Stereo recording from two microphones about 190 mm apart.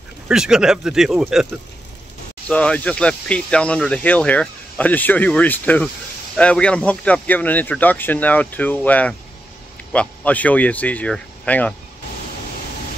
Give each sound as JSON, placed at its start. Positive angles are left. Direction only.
{"t": 0.3, "sound": "speech", "side_deg": -5}